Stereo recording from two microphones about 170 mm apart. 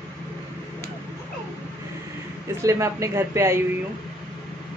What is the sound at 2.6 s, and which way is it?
Speech, 20° right (ahead or behind).